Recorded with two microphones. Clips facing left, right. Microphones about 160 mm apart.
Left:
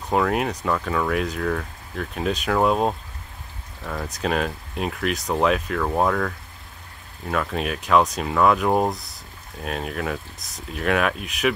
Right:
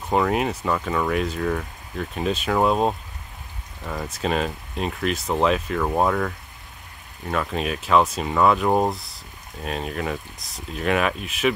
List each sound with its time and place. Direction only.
0.1 s speech: centre (ahead or behind)